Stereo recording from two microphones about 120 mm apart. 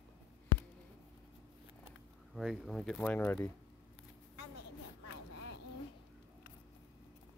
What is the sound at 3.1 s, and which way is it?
Speech, 15° left (ahead or behind).